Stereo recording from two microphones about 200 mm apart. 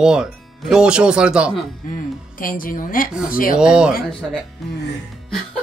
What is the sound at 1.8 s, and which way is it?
A woman's voice, 40° left (ahead or behind).